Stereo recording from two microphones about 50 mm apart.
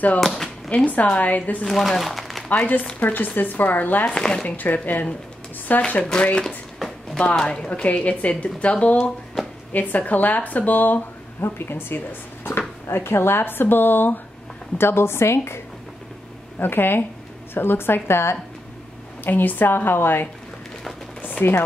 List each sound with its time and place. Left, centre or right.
0.2 s speech: centre
0.7 s speech: left
1.7 s speech: centre
2.5 s a woman's voice: left
3.0 s speech: left
4.2 s speech: centre
4.5 s speech: left
5.8 s a woman's voice: left
11.4 s a woman's voice: left
12.9 s a woman's voice: left
14.8 s a woman's voice: left
16.5 s a woman's voice: left
19.2 s a woman's voice: left
21.2 s chopping: left